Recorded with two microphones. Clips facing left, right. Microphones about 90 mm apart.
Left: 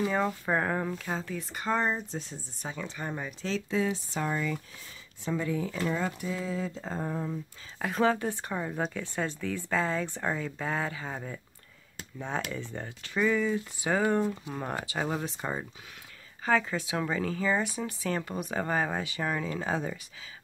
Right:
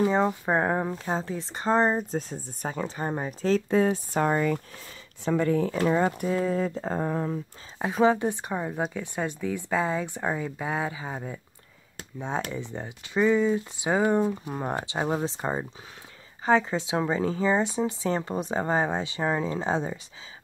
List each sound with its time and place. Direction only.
0.0 s speech: 25° right (ahead or behind); by 7.3 s 70° right (ahead or behind)
8.0 s speech: 20° right (ahead or behind)
12.4 s speech: 20° right (ahead or behind)